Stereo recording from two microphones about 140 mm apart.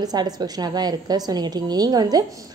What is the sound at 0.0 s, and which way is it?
A woman's voice, 30° right (ahead or behind).